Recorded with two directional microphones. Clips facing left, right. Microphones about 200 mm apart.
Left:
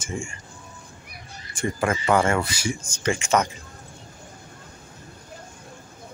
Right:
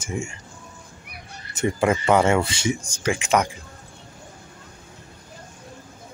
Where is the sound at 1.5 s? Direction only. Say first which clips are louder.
Right 4 dB; 20° right (ahead or behind).